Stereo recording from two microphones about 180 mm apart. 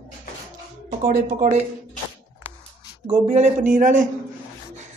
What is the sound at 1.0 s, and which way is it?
Speech, 45° right (ahead or behind).